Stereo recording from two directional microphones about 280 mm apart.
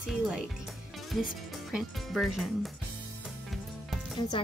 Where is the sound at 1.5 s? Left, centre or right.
Centre.